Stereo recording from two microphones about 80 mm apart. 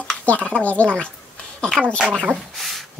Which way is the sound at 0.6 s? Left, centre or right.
Centre.